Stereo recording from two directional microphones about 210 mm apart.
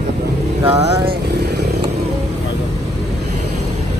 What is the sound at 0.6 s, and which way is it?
Vehicle, 30° right (ahead or behind).